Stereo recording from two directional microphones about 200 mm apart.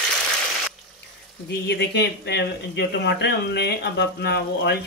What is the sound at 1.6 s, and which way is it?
Speech, 55° left (ahead or behind).